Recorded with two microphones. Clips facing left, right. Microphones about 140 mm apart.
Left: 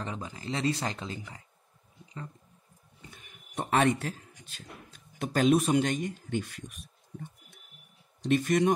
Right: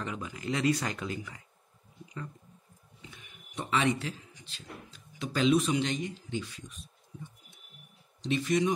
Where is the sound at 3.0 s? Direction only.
45° left (ahead or behind).